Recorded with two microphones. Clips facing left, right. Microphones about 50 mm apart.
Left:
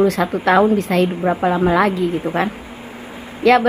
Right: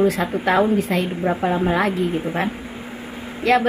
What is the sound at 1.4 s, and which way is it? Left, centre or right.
Speech, left.